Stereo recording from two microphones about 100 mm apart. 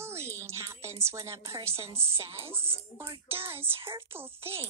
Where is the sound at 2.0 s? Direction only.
25° right (ahead or behind).